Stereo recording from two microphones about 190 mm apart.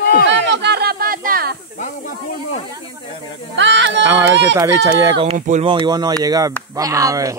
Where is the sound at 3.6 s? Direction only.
70° right (ahead or behind).